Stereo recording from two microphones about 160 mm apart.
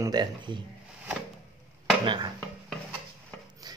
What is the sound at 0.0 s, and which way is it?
Speech, 25° right (ahead or behind).